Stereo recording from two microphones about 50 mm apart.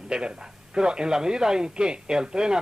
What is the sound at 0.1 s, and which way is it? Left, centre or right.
A man's voice, centre.